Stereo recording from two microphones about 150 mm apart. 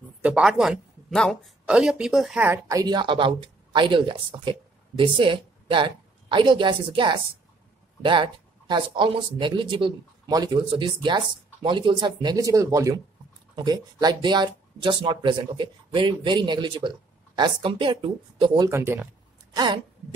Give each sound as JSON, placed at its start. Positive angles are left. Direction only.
{"t": 0.2, "sound": "speech", "side_deg": -5}
{"t": 2.7, "sound": "speech", "side_deg": -25}
{"t": 18.7, "sound": "speech", "side_deg": -15}
{"t": 19.5, "sound": "speech", "side_deg": -30}